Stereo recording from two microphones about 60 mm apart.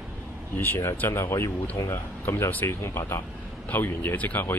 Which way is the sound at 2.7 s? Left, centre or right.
Left.